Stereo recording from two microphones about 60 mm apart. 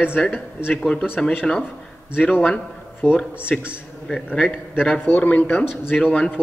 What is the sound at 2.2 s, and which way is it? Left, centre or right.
Speech, left.